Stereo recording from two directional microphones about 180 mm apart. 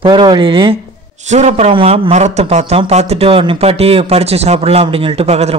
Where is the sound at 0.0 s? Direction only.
25° right (ahead or behind).